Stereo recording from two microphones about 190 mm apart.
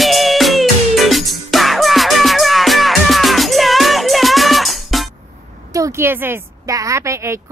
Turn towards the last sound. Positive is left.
turn(degrees=-15)  # may be behind; listen again after turning